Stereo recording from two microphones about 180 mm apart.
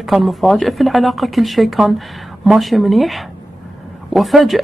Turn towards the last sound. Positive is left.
turn(degrees=0)  # may be behind; listen again after turning